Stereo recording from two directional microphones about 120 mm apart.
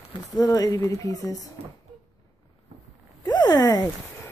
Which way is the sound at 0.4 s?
30° left (ahead or behind).